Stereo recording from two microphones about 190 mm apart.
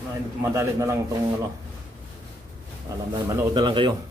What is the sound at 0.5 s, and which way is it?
Speech, 15° right (ahead or behind).